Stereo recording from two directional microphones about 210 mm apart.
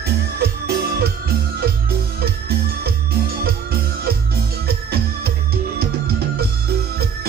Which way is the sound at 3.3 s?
45° right (ahead or behind).